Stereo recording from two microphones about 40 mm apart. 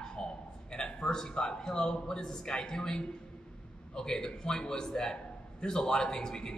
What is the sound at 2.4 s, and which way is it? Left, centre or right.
A man's voice, centre.